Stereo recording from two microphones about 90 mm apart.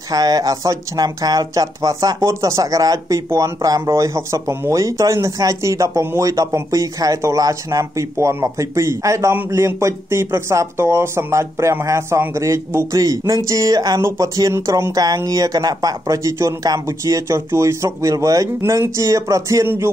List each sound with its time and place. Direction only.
0.1 s speech: 45° right (ahead or behind)